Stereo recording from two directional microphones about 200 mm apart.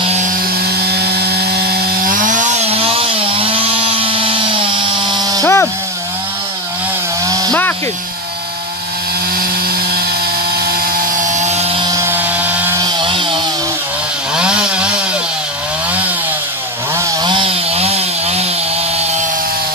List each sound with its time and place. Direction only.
0.8 s chainsaw: 55° right (ahead or behind); by 5.4 s 20° right (ahead or behind)
5.4 s a sound: 15° left (ahead or behind)
7.2 s chainsaw: 15° right (ahead or behind)
11.0 s chainsaw: 35° right (ahead or behind)
14.3 s chainsaw: 5° right (ahead or behind)
17.0 s chainsaw: 25° right (ahead or behind)